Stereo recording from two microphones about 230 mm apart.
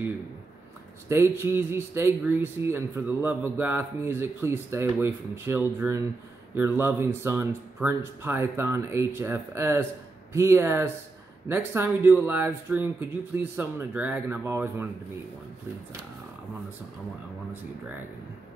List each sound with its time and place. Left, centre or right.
1.0 s a man's voice: centre